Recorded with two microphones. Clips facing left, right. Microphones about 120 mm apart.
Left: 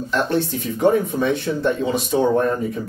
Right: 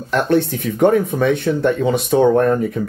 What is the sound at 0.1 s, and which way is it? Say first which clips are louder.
Speech: right 5 dB; 55° right (ahead or behind).